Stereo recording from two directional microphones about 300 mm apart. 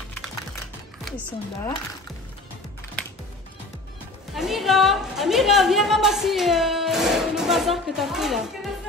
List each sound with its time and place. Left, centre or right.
1.0 s a woman's voice: centre
4.4 s a woman's voice: centre